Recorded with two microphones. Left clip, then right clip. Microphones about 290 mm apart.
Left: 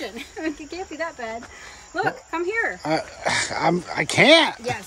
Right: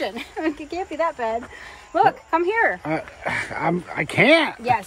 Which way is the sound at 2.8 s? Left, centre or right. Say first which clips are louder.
Left 2 dB; centre.